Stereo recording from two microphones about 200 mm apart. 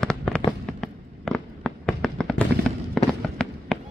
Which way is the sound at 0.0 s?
5° left (ahead or behind).